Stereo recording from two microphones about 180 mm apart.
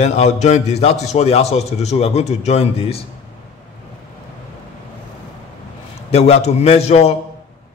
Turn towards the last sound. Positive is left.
turn(degrees=35)  # may be behind; listen again after turning